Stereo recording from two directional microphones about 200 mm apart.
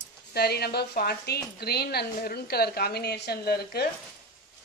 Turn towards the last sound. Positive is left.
turn(degrees=50)  # may be behind; listen again after turning